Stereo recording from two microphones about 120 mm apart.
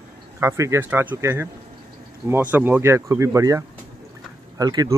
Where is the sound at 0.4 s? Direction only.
20° right (ahead or behind).